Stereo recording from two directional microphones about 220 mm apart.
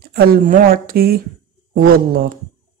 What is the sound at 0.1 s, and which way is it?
Speech, 45° right (ahead or behind).